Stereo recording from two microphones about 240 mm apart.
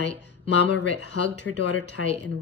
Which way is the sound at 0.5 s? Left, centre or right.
Left.